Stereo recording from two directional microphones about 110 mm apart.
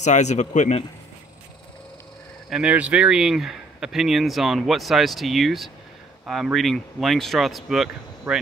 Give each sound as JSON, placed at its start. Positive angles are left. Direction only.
{"t": 0.0, "sound": "speech", "side_deg": 90}
{"t": 2.5, "sound": "speech", "side_deg": -10}